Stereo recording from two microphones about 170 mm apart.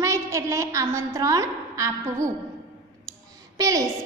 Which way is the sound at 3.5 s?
20° right (ahead or behind).